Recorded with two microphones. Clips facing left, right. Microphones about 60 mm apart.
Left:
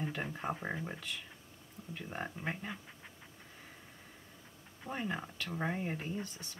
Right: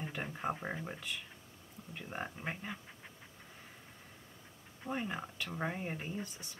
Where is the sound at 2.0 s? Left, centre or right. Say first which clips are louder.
Even; centre.